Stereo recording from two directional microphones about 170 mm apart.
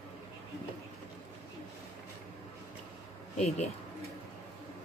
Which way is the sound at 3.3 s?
40° left (ahead or behind).